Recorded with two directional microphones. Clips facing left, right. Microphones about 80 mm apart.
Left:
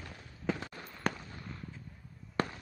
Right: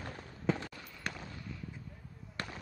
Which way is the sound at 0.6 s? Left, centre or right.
Left.